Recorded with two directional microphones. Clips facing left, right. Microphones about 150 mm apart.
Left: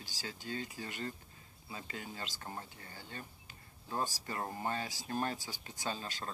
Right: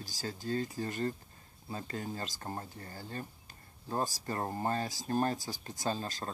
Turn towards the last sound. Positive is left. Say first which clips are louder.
# right 5 dB
turn(degrees=-40)  # may be behind; listen again after turning